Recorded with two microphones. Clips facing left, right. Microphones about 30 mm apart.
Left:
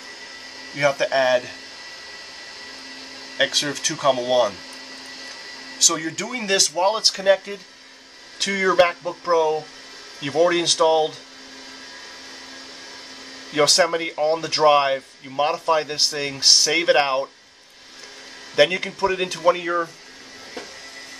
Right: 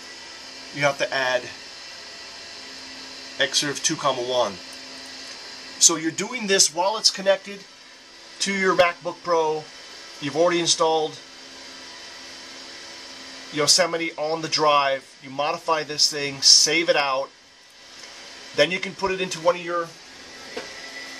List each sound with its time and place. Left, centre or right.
0.7 s speech: centre
3.3 s speech: centre
5.8 s speech: centre
10.6 s speech: centre
13.7 s speech: centre
18.6 s speech: centre
20.5 s music: centre